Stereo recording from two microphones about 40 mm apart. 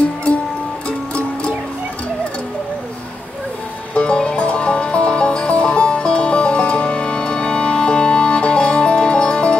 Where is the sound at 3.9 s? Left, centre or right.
Left.